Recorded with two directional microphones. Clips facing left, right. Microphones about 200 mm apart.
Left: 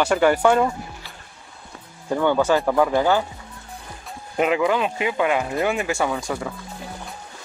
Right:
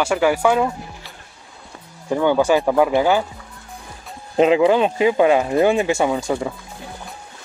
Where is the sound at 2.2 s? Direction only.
15° right (ahead or behind).